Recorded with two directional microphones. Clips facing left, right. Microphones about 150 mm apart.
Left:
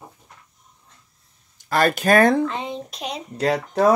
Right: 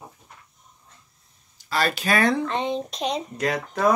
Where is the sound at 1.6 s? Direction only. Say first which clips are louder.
Left 6 dB; 50° left (ahead or behind).